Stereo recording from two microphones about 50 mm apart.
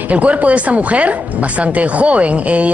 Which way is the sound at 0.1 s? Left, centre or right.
Right.